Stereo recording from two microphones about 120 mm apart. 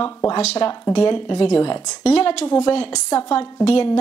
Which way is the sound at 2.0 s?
55° left (ahead or behind).